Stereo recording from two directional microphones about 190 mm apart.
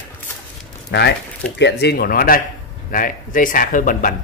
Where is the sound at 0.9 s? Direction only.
70° left (ahead or behind).